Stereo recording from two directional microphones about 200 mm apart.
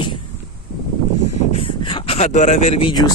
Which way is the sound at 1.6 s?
25° left (ahead or behind).